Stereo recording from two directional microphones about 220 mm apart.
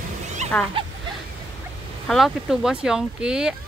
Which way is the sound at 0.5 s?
5° left (ahead or behind).